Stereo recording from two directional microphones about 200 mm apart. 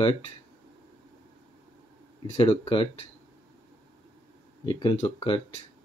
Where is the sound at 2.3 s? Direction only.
30° left (ahead or behind).